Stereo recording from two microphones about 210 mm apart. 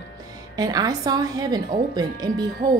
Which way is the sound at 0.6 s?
20° right (ahead or behind).